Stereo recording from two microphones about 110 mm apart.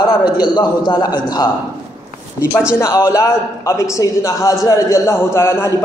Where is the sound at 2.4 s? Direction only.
25° left (ahead or behind).